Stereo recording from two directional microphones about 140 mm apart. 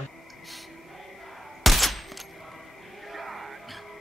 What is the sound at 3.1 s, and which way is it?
Music, centre (ahead or behind).